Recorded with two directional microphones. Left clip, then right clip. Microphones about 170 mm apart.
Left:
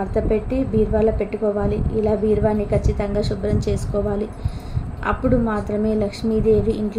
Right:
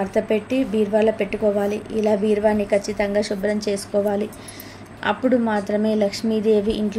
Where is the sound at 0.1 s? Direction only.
20° right (ahead or behind).